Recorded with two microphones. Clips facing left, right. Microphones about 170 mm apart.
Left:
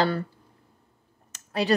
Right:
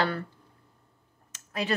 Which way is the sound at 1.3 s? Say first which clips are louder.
Left 5 dB; 35° left (ahead or behind).